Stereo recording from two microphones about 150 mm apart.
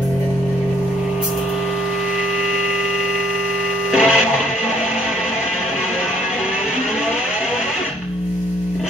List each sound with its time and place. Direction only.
3.9 s printer: 5° right (ahead or behind)